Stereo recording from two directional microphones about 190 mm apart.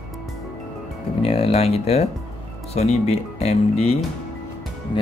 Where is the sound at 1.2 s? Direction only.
30° left (ahead or behind).